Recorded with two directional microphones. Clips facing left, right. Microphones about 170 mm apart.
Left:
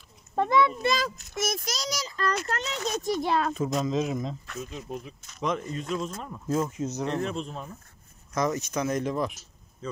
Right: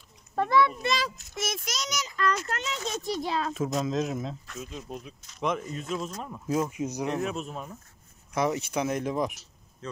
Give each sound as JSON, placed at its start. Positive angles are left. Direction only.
{"t": 0.4, "sound": "a child's voice", "side_deg": 20}
{"t": 0.8, "sound": "a child's voice", "side_deg": 45}
{"t": 3.0, "sound": "a child's voice", "side_deg": 55}
{"t": 3.5, "sound": "speech", "side_deg": -5}